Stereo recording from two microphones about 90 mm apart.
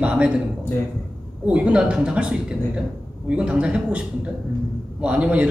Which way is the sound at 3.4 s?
10° right (ahead or behind).